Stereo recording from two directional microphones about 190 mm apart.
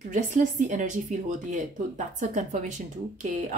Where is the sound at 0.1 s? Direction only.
40° right (ahead or behind).